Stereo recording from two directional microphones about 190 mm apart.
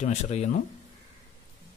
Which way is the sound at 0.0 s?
40° left (ahead or behind).